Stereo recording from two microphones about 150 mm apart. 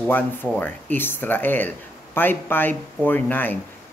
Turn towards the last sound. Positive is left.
turn(degrees=10)  # may be behind; listen again after turning